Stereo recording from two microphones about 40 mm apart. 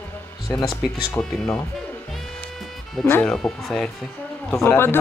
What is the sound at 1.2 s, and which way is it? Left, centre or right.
Speech, left.